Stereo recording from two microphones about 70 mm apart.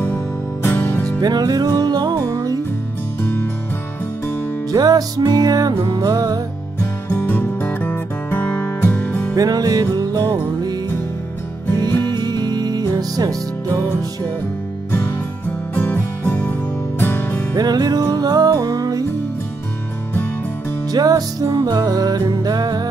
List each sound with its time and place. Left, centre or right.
0.6 s music: left
1.2 s music: right
4.7 s music: right
6.8 s music: left
9.3 s music: right
12.1 s music: right
14.9 s music: left
17.6 s music: right
20.9 s music: right